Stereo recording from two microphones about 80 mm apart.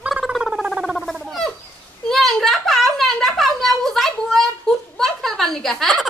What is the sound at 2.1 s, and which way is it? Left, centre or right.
A woman's voice, centre.